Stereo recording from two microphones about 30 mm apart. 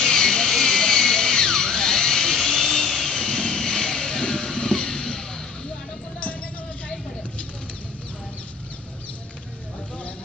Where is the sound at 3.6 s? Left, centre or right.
Left.